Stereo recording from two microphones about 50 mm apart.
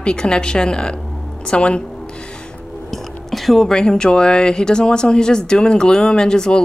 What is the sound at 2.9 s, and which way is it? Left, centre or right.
Speech, centre.